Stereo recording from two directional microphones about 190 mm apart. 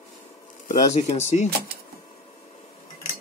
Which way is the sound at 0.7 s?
40° left (ahead or behind).